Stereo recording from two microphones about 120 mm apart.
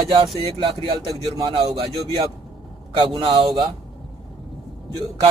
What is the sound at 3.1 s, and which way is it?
Speech, 45° right (ahead or behind).